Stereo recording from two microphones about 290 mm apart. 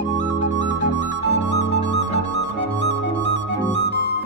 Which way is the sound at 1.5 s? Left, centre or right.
Left.